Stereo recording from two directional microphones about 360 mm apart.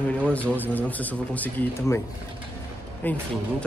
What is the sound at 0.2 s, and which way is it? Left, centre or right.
A man's voice, centre.